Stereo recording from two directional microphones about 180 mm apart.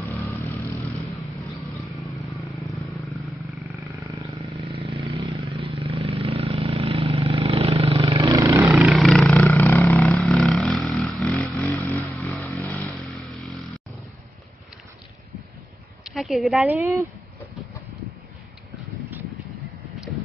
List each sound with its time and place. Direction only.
0.1 s vehicle: 10° left (ahead or behind)
1.2 s vehicle: centre (ahead or behind)
3.6 s vehicle: 10° right (ahead or behind)
4.8 s vehicle: 30° right (ahead or behind)
8.8 s vehicle: centre (ahead or behind)
12.5 s motorcycle: 10° left (ahead or behind)
16.0 s a sound: centre (ahead or behind)
16.8 s speech: 15° right (ahead or behind)